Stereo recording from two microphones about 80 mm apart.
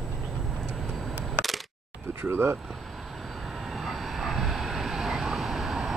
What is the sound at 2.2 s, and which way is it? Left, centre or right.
Speech, right.